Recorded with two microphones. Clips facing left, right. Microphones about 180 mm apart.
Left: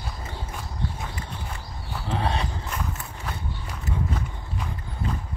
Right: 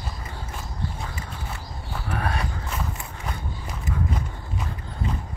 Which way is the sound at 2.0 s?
25° left (ahead or behind).